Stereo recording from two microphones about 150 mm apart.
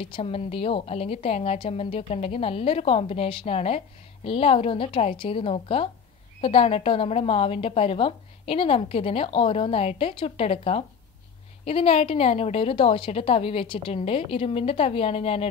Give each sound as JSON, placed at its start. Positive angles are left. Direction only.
{"t": 0.0, "sound": "a woman's voice", "side_deg": 40}